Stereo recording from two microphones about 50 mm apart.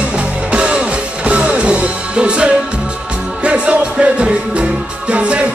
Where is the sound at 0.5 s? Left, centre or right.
Right.